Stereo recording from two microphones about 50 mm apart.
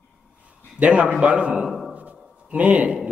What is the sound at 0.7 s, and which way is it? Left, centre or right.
Speech, right.